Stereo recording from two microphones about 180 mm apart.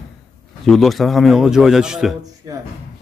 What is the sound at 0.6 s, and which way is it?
Speech, centre (ahead or behind).